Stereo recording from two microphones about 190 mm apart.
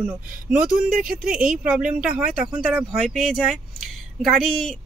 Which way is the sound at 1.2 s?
45° right (ahead or behind).